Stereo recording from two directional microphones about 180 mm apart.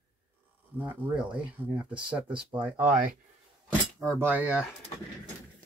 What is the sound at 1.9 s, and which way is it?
Speech, 25° right (ahead or behind).